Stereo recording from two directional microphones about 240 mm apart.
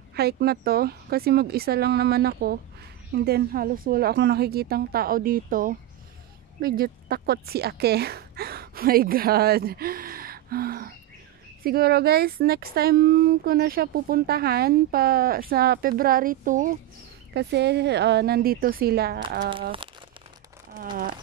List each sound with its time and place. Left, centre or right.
0.1 s speech: right
17.3 s speech: right
19.5 s crumpling: right
20.7 s a sound: right